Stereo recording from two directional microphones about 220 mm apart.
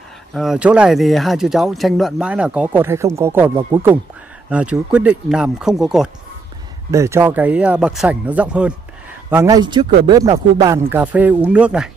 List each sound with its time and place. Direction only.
0.3 s speech: centre (ahead or behind)
6.9 s speech: 15° right (ahead or behind)
10.6 s speech: 10° right (ahead or behind)